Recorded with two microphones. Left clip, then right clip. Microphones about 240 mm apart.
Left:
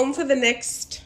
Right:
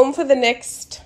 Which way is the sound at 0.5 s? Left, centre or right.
Right.